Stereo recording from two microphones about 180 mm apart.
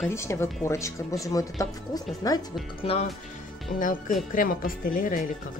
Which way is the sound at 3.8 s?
50° left (ahead or behind).